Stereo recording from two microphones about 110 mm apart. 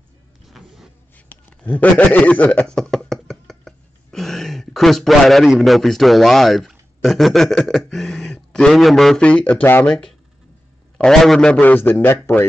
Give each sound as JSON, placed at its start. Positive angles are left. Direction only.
{"t": 0.5, "sound": "power windows", "side_deg": 0}
{"t": 1.1, "sound": "speech", "side_deg": 15}
{"t": 2.8, "sound": "a sound", "side_deg": 5}
{"t": 11.0, "sound": "a man's voice", "side_deg": 5}
{"t": 11.6, "sound": "speech", "side_deg": 20}